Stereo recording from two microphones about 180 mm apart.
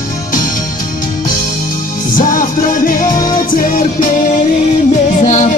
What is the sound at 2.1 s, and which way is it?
Music, 50° left (ahead or behind).